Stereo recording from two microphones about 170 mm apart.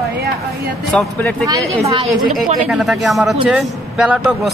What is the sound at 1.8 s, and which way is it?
Speech, 35° right (ahead or behind).